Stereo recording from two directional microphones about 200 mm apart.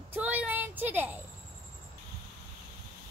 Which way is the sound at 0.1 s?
10° right (ahead or behind).